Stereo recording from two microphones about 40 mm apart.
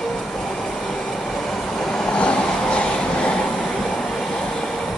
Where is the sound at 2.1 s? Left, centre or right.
Left.